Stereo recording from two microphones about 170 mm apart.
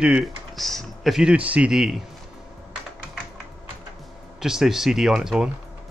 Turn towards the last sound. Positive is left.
turn(degrees=-5)  # may be behind; listen again after turning